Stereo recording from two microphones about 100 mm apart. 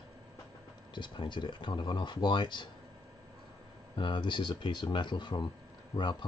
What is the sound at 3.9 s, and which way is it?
Speech, 50° left (ahead or behind).